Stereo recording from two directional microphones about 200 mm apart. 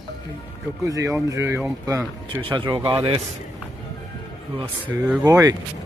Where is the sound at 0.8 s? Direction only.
15° right (ahead or behind).